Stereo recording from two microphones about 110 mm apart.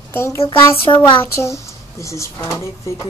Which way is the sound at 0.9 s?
35° left (ahead or behind).